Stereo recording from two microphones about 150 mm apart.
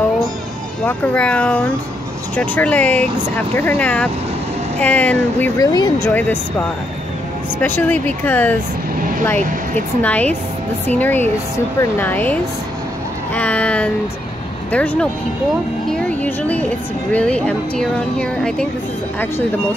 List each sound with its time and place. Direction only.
0.8 s speech: 10° left (ahead or behind)
5.6 s speech: 25° left (ahead or behind)
6.0 s speech: 10° left (ahead or behind)
7.6 s speech: 10° left (ahead or behind)
10.0 s speech: 10° left (ahead or behind)